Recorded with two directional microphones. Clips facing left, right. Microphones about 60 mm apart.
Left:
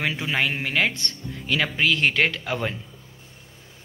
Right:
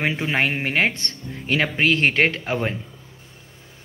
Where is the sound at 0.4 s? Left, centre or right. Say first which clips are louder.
Right 2 dB; right.